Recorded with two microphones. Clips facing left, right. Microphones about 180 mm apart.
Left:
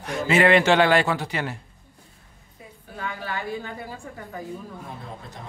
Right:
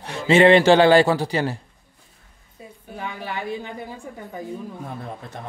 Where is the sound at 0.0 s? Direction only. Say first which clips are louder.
Right 5 dB; 30° right (ahead or behind).